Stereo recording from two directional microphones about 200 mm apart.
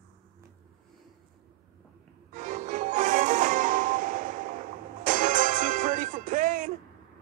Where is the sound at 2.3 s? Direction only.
40° right (ahead or behind).